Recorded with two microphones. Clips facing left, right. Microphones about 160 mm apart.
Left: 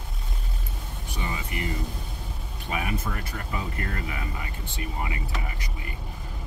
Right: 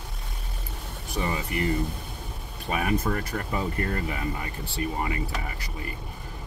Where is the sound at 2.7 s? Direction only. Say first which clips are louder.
Right 5 dB; 45° right (ahead or behind).